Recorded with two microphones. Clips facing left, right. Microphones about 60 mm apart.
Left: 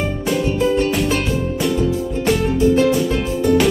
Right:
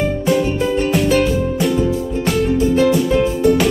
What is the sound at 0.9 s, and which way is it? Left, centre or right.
Music, centre.